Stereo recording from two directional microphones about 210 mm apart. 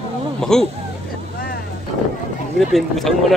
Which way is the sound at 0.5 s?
5° left (ahead or behind).